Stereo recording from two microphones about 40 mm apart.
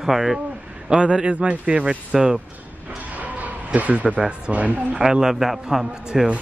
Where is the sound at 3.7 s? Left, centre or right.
Right.